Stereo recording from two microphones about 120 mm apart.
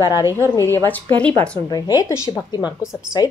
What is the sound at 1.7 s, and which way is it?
A woman's voice, 30° left (ahead or behind).